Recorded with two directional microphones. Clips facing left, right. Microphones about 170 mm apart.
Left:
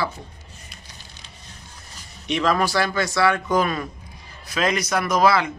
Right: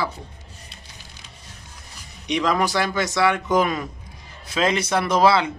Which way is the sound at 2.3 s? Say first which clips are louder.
Even; 15° right (ahead or behind).